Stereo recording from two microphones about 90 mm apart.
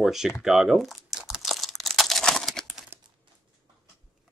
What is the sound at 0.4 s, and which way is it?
Crumpling, 5° right (ahead or behind).